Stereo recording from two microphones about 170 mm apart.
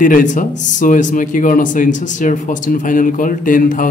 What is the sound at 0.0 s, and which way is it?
A man's voice, 50° left (ahead or behind).